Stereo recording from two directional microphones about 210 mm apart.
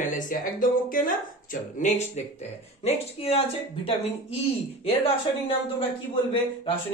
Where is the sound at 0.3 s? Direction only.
40° left (ahead or behind).